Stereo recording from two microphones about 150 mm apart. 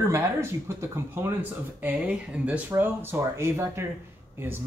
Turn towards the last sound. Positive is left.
turn(degrees=-15)  # may be behind; listen again after turning